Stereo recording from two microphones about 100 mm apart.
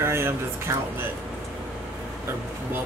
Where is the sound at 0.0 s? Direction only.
25° right (ahead or behind).